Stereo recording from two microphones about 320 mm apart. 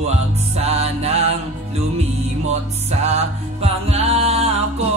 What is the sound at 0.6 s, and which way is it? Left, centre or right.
Music, centre.